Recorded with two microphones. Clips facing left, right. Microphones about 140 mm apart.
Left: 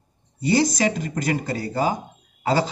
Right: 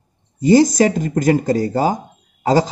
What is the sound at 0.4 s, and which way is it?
A man's voice, 45° right (ahead or behind).